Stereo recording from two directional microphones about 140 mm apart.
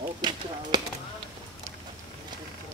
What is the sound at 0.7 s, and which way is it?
Speech, 30° right (ahead or behind).